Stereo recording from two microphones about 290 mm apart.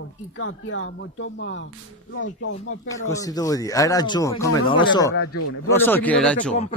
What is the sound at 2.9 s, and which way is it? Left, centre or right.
Speech, centre.